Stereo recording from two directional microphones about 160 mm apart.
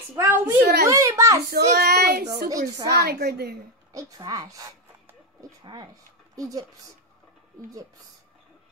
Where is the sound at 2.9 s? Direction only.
80° right.